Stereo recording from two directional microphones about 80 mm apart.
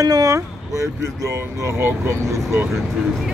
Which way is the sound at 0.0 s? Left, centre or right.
Right.